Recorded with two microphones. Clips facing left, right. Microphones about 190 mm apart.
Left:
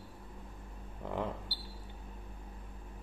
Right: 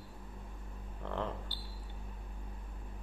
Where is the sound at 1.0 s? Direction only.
15° left (ahead or behind).